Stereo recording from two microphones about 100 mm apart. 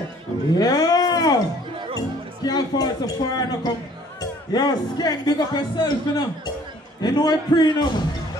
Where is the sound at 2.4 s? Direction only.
40° left (ahead or behind).